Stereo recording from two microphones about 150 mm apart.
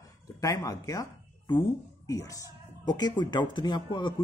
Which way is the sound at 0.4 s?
25° left (ahead or behind).